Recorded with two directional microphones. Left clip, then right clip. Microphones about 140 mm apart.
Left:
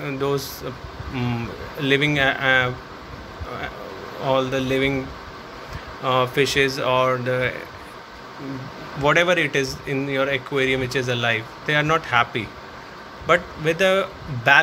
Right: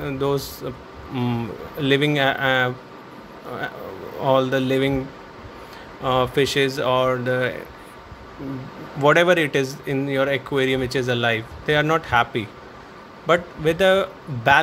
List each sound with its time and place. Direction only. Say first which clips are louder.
0.0 s speech: right 1 dB; 30° right (ahead or behind)
4.2 s speech: right 2 dB; 40° right (ahead or behind)
6.0 s speech: even; 30° right (ahead or behind)
9.0 s speech: right 2 dB; 40° right (ahead or behind)